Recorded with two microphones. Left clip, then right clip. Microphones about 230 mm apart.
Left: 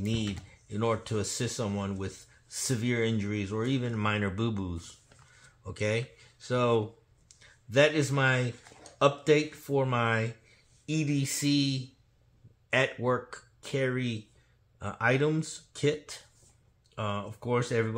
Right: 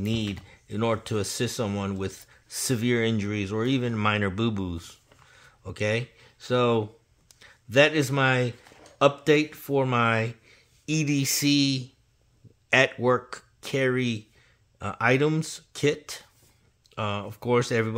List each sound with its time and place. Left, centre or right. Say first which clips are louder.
0.0 s speech: right 4 dB; right